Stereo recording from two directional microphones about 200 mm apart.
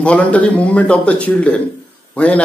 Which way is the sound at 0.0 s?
5° left (ahead or behind).